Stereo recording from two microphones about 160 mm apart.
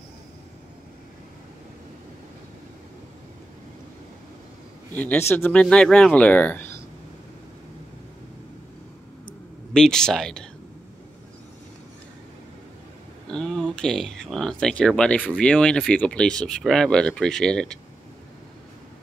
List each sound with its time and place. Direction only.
4.9 s speech: 10° left (ahead or behind)
9.8 s speech: 5° left (ahead or behind)
13.3 s speech: 5° left (ahead or behind)